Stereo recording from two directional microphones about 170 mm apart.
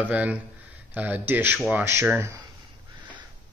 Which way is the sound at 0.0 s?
10° right (ahead or behind).